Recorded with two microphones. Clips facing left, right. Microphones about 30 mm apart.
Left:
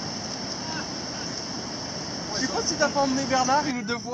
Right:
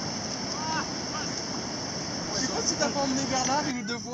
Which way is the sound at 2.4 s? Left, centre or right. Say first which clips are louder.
Left 5 dB; centre.